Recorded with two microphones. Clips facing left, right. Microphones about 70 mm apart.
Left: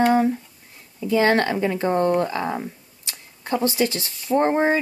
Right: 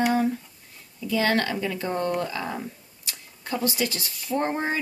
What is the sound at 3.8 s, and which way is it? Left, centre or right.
Speech, left.